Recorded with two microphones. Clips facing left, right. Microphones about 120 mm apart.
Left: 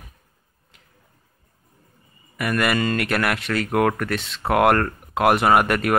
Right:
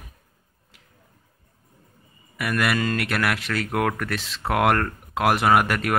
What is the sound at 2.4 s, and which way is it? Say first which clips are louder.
Speech: left 2 dB; centre (ahead or behind).